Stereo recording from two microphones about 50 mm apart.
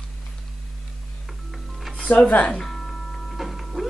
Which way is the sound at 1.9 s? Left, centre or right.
Left.